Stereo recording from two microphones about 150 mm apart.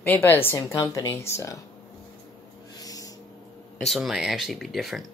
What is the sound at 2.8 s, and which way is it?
Owl, 25° left (ahead or behind).